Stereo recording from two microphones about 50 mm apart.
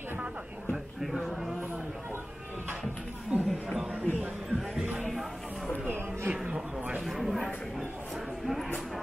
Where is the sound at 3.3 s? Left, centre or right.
Right.